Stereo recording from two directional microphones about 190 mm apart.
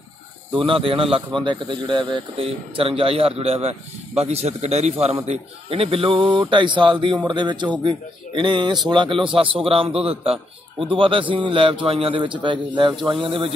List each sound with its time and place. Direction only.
0.5 s speech: 25° right (ahead or behind)